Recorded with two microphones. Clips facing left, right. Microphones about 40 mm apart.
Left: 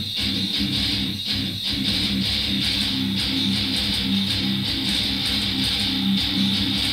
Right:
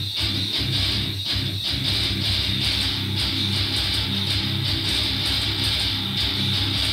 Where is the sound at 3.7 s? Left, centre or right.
Centre.